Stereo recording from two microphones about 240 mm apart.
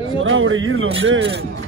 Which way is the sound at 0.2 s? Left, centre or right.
Right.